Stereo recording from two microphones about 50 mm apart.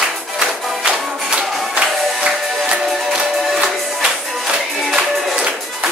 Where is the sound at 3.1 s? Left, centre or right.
Centre.